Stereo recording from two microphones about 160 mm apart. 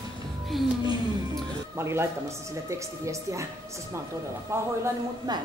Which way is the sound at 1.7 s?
15° right (ahead or behind).